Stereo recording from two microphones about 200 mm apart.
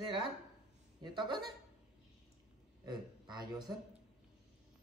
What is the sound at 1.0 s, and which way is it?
Speech, 20° right (ahead or behind).